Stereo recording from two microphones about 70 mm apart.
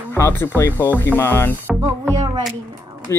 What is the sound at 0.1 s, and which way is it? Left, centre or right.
Music, left.